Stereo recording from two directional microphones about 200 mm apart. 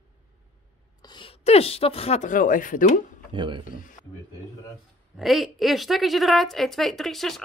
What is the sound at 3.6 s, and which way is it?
Speech, 40° left (ahead or behind).